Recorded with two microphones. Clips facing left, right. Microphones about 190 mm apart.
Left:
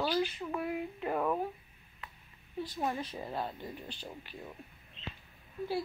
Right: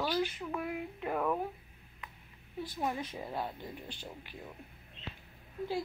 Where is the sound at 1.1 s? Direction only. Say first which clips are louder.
Left 1 dB; 5° left (ahead or behind).